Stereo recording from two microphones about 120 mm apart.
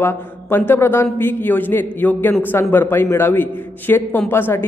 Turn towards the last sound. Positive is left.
turn(degrees=20)  # may be behind; listen again after turning